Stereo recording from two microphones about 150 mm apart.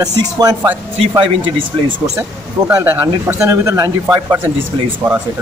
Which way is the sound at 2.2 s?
15° right (ahead or behind).